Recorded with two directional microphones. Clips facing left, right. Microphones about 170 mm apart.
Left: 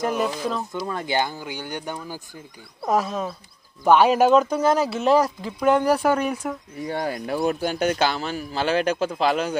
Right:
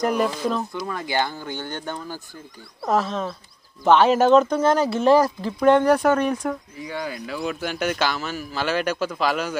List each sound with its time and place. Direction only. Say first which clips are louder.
0.0 s speech: right 2 dB; 5° left (ahead or behind)
0.8 s speech: left 2 dB; 20° left (ahead or behind)
6.8 s a man's voice: left 3 dB; 50° left (ahead or behind); by 9.6 s 30° left (ahead or behind)